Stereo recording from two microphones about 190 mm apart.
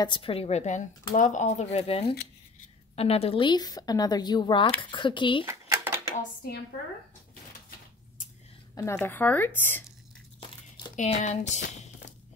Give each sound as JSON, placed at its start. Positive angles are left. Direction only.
{"t": 0.0, "sound": "speech", "side_deg": 25}
{"t": 5.4, "sound": "a sound", "side_deg": -10}
{"t": 6.1, "sound": "speech", "side_deg": 50}
{"t": 9.0, "sound": "speech", "side_deg": 10}
{"t": 11.0, "sound": "speech", "side_deg": 35}